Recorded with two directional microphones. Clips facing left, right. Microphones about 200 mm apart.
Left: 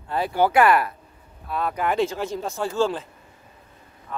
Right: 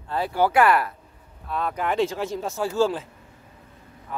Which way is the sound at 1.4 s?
5° left (ahead or behind).